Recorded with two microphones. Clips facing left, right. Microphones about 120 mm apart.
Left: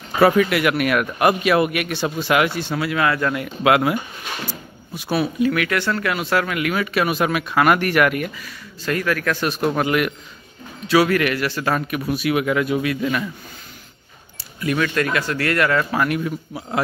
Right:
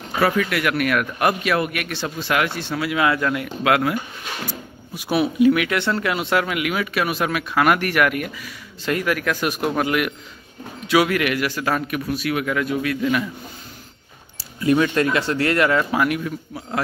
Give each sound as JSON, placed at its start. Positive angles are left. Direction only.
{"t": 0.2, "sound": "speech", "side_deg": 20}
{"t": 0.6, "sound": "a man's voice", "side_deg": 10}
{"t": 2.9, "sound": "speech", "side_deg": -15}
{"t": 3.2, "sound": "speech", "side_deg": 0}
{"t": 3.6, "sound": "a man's voice", "side_deg": 15}
{"t": 4.9, "sound": "speech", "side_deg": -15}
{"t": 8.8, "sound": "speech", "side_deg": -15}
{"t": 12.1, "sound": "a man's voice", "side_deg": 10}
{"t": 14.6, "sound": "speech", "side_deg": -25}
{"t": 16.3, "sound": "a man's voice", "side_deg": 10}